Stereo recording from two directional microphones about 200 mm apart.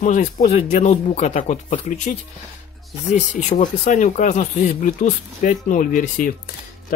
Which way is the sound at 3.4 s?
35° left (ahead or behind).